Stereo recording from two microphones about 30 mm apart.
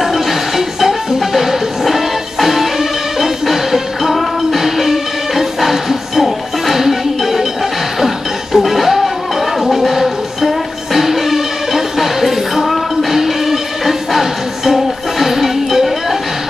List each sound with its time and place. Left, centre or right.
0.0 s music: centre
8.5 s music: centre